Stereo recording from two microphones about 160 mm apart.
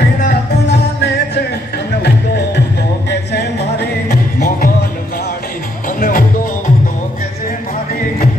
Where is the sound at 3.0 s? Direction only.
90° left.